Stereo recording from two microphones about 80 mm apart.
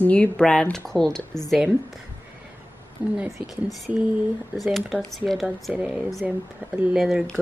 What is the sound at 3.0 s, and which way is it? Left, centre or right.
Speech, centre.